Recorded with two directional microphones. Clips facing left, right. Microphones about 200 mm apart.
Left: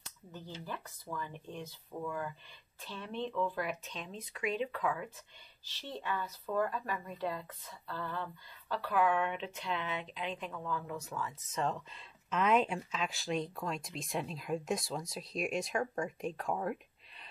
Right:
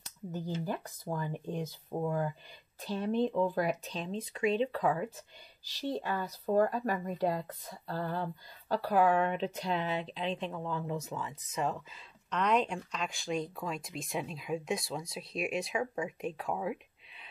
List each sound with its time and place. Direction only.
0.3 s speech: 40° right (ahead or behind); by 17.3 s 5° right (ahead or behind)